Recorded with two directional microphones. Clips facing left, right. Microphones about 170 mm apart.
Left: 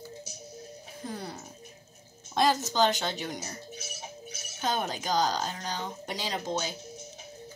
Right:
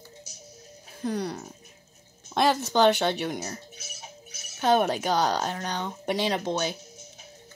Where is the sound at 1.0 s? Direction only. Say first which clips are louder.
Right 9 dB; 75° right (ahead or behind).